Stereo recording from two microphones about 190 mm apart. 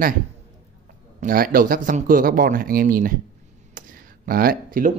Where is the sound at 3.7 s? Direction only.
50° right (ahead or behind).